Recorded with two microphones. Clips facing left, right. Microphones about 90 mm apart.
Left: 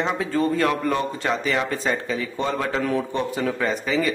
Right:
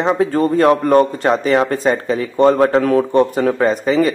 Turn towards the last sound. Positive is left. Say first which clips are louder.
# right 8 dB
turn(degrees=-45)  # may be behind; listen again after turning